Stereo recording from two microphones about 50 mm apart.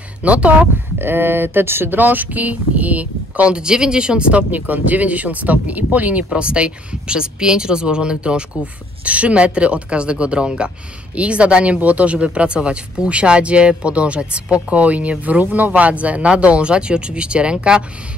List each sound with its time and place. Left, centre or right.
0.2 s speech: right
0.9 s speech: right
6.3 s speech: right